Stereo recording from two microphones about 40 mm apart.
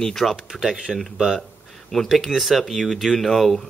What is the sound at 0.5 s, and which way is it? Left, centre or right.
Speech, centre.